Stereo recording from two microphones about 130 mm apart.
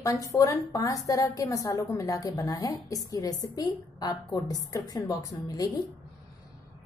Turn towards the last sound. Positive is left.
turn(degrees=30)  # may be behind; listen again after turning